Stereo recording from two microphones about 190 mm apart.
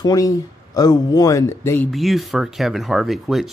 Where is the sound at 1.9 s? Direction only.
Centre (ahead or behind).